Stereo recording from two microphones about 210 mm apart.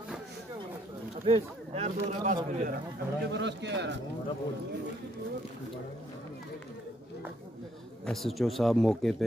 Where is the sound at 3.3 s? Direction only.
55° right (ahead or behind).